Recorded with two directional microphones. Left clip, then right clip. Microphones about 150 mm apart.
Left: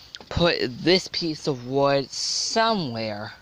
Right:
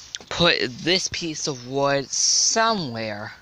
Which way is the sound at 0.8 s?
30° left (ahead or behind).